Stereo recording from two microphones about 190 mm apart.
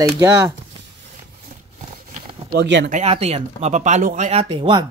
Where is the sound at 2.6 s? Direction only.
70° right (ahead or behind).